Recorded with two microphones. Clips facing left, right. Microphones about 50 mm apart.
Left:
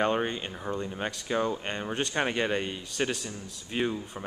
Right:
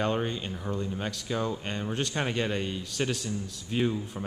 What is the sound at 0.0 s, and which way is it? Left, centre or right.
Speech, left.